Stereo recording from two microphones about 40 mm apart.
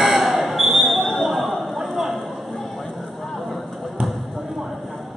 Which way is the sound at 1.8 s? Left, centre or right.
Centre.